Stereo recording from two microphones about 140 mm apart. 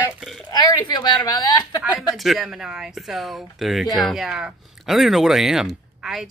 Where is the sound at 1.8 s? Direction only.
5° right (ahead or behind).